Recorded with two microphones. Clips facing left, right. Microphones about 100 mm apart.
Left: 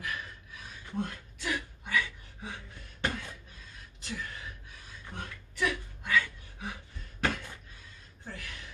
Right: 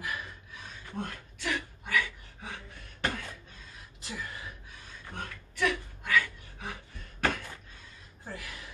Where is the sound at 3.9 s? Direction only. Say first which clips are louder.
Even; 5° right (ahead or behind).